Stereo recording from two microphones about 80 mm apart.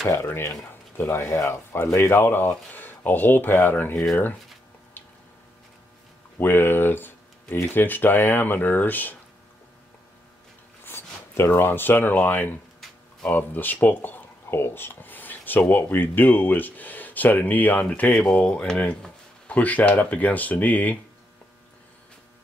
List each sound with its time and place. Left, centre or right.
0.0 s speech: left
6.4 s speech: left
10.9 s speech: left